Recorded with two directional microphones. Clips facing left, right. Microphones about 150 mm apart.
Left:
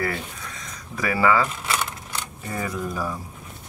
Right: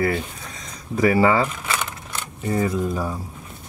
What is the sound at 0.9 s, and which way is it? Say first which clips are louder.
Speech: right 4 dB; 25° right (ahead or behind).